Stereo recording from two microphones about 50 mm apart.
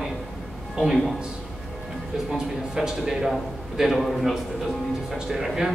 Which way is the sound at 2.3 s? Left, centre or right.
Centre.